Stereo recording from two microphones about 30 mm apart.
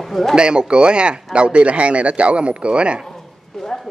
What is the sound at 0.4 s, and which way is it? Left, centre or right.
Speech, right.